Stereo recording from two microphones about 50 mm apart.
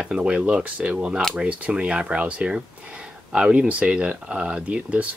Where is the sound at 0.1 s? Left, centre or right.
Right.